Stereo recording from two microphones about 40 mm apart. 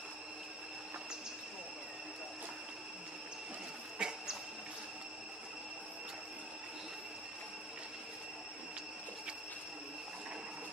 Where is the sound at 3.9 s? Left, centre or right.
Centre.